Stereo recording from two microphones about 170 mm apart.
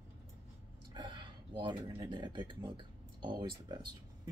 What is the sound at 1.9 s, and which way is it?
Speech, 25° right (ahead or behind).